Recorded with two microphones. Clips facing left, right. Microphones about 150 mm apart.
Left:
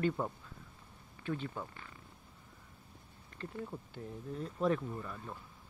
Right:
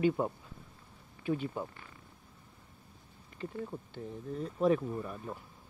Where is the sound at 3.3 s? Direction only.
5° right (ahead or behind).